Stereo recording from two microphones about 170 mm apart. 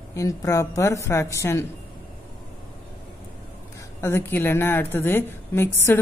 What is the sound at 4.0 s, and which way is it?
A woman's voice, 15° left (ahead or behind).